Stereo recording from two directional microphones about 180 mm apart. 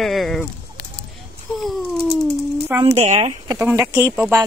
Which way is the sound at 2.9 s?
40° right (ahead or behind).